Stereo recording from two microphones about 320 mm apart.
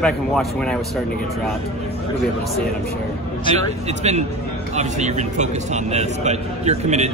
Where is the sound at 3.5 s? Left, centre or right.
Right.